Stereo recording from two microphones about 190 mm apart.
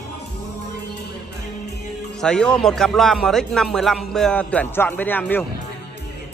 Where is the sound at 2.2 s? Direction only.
5° left (ahead or behind).